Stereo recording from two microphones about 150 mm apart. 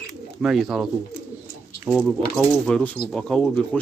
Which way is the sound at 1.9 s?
15° right (ahead or behind).